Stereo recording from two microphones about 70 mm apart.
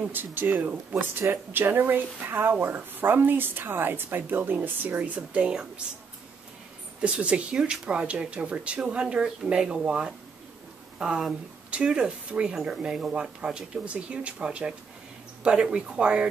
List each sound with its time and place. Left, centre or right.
0.1 s speech: right
7.0 s speech: centre